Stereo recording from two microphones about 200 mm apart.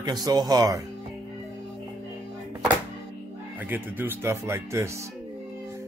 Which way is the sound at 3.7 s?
10° right (ahead or behind).